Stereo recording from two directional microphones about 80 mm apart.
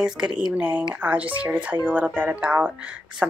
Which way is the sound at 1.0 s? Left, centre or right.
Centre.